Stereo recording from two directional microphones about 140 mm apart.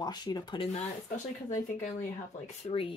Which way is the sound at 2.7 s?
40° left (ahead or behind).